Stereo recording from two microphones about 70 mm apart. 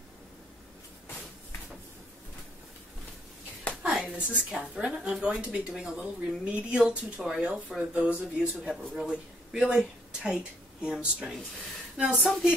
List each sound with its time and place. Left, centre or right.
4.0 s a woman's voice: centre